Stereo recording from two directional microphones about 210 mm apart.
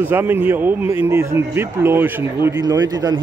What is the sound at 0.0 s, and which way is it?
A man's voice, 10° right (ahead or behind).